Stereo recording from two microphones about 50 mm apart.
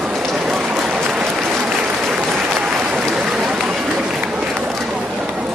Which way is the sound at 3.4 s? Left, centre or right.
Centre.